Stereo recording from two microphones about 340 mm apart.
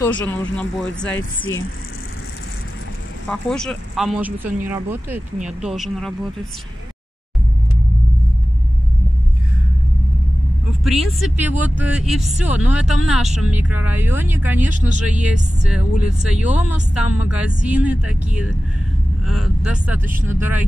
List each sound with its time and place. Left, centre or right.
0.2 s speech: centre
1.1 s speech: left
3.3 s speech: centre
10.8 s speech: centre